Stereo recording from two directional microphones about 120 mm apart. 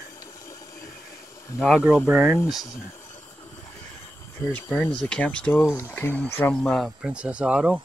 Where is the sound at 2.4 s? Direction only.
30° left (ahead or behind).